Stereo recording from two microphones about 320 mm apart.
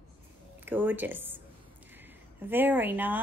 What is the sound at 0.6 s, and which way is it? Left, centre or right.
Speech, centre.